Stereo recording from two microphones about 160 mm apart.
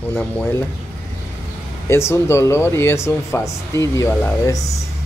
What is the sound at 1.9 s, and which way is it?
Speech, 15° left (ahead or behind).